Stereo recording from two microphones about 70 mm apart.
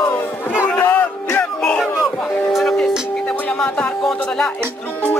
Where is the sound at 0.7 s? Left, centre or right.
Left.